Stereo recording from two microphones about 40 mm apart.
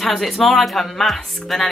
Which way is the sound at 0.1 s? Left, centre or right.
Centre.